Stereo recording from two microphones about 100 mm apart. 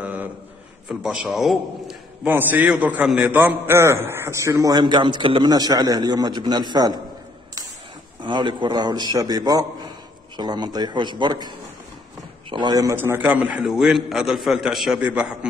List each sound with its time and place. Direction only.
0.0 s a sound: 15° right (ahead or behind)
0.8 s a man's voice: 5° right (ahead or behind)
2.2 s a man's voice: 15° right (ahead or behind)
4.7 s a man's voice: 50° right (ahead or behind)
5.4 s a man's voice: 40° right (ahead or behind)
8.2 s a man's voice: 50° right (ahead or behind)
12.9 s a man's voice: 25° right (ahead or behind)
13.7 s a man's voice: 5° right (ahead or behind)